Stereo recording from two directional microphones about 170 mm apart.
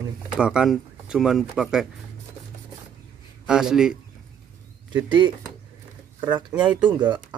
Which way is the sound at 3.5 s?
5° right (ahead or behind).